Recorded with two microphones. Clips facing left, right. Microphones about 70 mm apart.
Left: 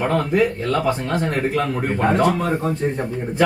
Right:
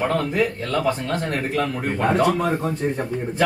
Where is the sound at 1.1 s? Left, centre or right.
Centre.